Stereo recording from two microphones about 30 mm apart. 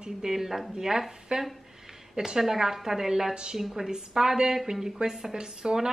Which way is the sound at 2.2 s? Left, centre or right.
Centre.